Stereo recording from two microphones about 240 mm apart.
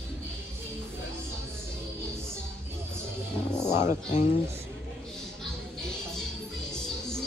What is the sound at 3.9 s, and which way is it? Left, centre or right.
Speech, left.